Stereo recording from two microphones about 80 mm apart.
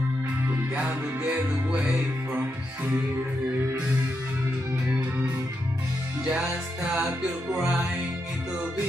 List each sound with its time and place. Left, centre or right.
0.8 s music: centre
6.2 s music: centre